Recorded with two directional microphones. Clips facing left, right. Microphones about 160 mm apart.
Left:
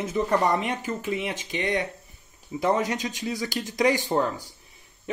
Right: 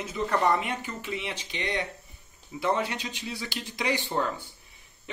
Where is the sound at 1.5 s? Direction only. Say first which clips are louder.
Left 5 dB; 20° right (ahead or behind).